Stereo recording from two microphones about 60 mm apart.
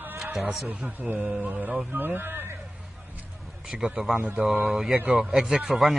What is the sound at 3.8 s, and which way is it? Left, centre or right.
Speech, centre.